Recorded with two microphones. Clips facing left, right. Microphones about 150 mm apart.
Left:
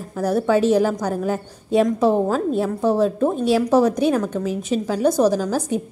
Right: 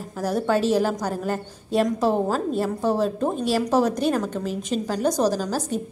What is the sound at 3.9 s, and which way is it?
Speech, 5° left (ahead or behind).